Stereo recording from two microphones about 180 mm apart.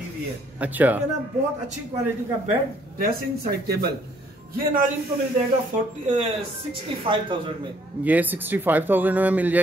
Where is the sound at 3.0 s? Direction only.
60° right (ahead or behind).